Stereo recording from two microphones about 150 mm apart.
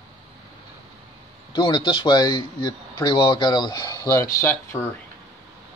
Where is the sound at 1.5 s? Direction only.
35° left (ahead or behind).